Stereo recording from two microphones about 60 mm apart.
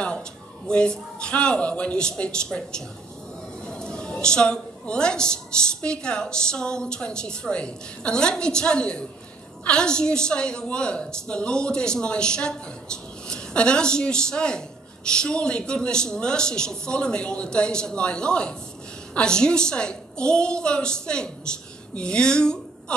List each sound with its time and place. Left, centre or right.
0.0 s a man's voice: centre